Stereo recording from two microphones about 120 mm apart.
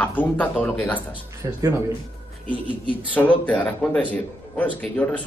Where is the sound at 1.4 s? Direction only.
25° right (ahead or behind).